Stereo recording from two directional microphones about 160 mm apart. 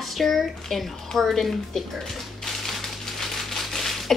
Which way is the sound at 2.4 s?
Centre (ahead or behind).